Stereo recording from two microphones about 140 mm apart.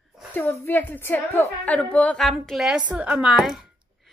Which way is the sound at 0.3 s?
15° left (ahead or behind).